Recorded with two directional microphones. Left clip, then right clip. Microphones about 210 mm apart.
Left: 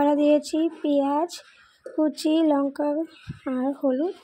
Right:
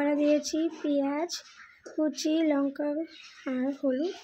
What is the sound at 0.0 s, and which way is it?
Speech, 20° left (ahead or behind).